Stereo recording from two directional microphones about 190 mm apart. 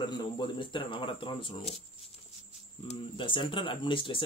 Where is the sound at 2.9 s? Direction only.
25° left (ahead or behind).